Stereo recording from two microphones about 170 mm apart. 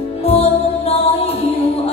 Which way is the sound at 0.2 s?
35° left (ahead or behind).